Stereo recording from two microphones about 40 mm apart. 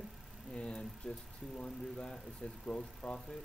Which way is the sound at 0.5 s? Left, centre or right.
Left.